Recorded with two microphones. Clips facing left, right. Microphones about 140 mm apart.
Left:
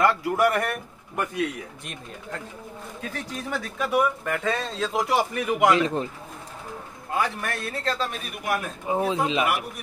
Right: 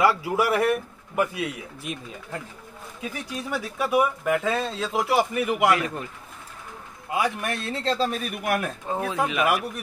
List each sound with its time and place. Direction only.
0.0 s speech: 5° right (ahead or behind)
5.7 s speech: 25° left (ahead or behind)
7.1 s a man's voice: 15° right (ahead or behind); by 8.2 s 30° right (ahead or behind)
8.8 s speech: 20° left (ahead or behind)